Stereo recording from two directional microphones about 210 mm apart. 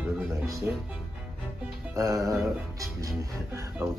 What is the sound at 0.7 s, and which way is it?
Speech, 10° right (ahead or behind).